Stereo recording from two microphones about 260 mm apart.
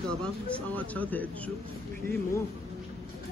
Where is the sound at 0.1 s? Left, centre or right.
Centre.